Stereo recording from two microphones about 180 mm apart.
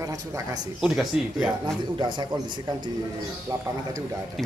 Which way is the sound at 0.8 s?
Centre (ahead or behind).